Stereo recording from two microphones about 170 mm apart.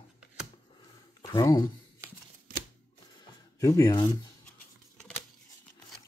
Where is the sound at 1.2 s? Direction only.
25° left (ahead or behind).